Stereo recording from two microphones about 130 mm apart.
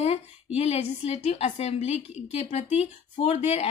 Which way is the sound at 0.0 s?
55° left (ahead or behind).